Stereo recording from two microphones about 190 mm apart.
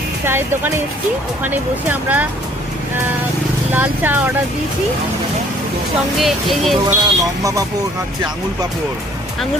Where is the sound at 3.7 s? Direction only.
10° right (ahead or behind).